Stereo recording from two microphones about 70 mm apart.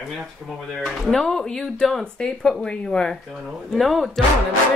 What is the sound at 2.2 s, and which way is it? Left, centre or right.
Speech, centre.